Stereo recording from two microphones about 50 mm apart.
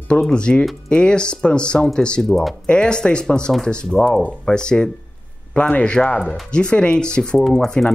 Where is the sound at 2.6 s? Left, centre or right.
Centre.